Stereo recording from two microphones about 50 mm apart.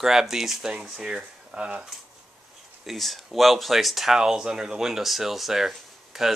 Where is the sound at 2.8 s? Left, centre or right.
Centre.